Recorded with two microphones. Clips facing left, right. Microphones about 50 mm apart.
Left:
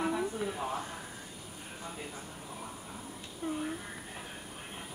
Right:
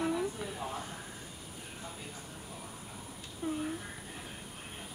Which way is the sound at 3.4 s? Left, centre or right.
Centre.